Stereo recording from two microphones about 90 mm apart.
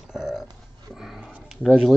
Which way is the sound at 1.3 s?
5° right (ahead or behind).